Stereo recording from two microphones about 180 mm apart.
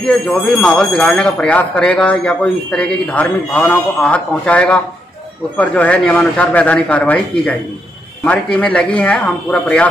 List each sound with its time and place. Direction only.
0.0 s speech: 5° left (ahead or behind)